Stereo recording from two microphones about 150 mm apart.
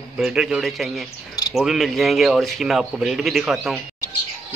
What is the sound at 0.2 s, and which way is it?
Speech, 5° right (ahead or behind).